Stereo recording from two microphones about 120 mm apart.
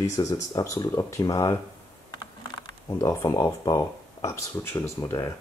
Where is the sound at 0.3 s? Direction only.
25° left (ahead or behind).